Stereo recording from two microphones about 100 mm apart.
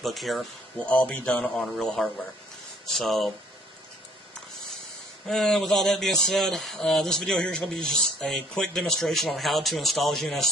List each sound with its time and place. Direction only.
0.0 s speech: centre (ahead or behind)
0.8 s speech: 15° left (ahead or behind)
3.0 s speech: centre (ahead or behind)
5.2 s speech: 5° left (ahead or behind)